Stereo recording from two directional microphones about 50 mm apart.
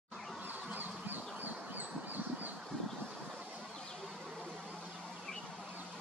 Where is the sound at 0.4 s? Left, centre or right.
Right.